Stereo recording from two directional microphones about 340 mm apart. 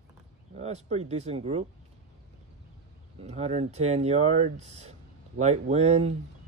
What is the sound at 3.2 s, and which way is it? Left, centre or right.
Speech, centre.